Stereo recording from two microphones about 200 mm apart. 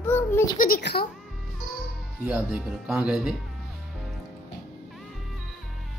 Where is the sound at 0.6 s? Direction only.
50° left (ahead or behind).